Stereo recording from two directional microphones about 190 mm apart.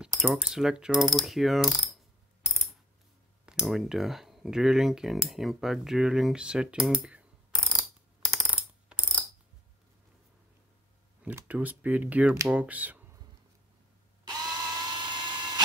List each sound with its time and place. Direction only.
0.0 s ratchet: 5° right (ahead or behind)
3.4 s speech: centre (ahead or behind)
8.3 s coin: centre (ahead or behind)
11.2 s speech: 10° right (ahead or behind)
14.2 s drill: 20° right (ahead or behind)